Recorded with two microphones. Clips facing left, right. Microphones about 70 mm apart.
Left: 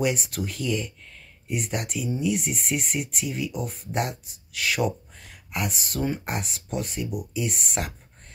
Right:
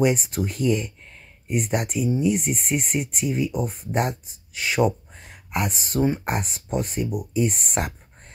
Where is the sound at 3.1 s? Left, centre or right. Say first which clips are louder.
Right 5 dB; right.